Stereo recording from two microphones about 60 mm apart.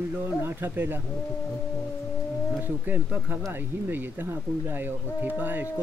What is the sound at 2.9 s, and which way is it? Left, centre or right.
Speech, right.